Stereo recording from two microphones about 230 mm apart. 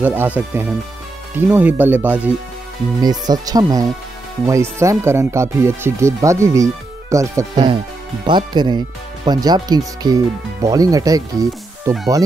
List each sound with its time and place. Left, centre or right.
0.0 s speech: centre